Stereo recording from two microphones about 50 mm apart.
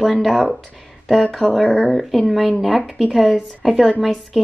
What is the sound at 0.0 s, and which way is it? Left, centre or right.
A woman's voice, centre.